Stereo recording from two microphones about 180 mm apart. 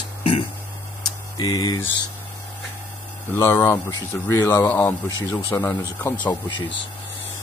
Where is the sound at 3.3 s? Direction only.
15° left (ahead or behind).